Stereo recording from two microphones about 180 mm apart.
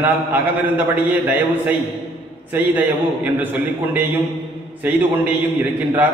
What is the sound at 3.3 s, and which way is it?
A man's voice, 10° right (ahead or behind).